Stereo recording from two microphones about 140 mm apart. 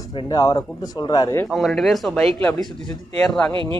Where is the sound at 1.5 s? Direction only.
Centre (ahead or behind).